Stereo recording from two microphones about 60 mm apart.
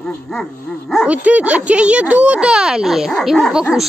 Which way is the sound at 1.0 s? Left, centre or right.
Right.